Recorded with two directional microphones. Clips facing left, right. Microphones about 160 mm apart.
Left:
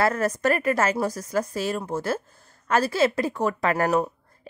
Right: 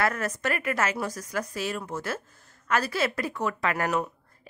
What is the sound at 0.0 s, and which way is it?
A woman's voice, 35° left (ahead or behind).